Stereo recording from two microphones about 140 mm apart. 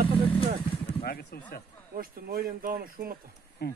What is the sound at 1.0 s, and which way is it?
Speech, 90° left.